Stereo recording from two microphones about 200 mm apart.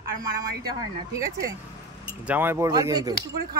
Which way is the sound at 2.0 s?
10° right (ahead or behind).